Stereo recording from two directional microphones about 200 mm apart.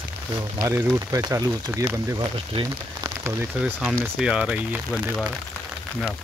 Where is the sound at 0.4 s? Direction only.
20° right (ahead or behind).